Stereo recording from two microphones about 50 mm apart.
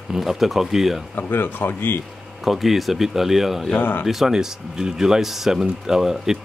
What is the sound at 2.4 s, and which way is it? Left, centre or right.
Speech, centre.